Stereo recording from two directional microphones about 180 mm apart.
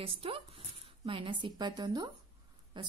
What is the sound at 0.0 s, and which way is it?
A woman's voice, 30° right (ahead or behind).